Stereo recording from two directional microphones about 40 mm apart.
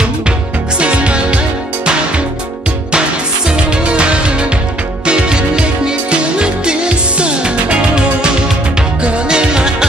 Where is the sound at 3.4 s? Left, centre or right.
Right.